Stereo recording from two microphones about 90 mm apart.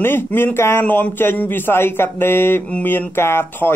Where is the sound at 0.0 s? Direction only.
25° left (ahead or behind).